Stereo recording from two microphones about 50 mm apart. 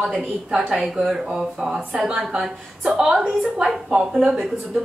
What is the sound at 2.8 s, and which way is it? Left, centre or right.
Speech, centre.